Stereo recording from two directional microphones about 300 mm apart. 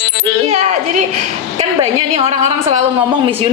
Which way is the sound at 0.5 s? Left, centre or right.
Right.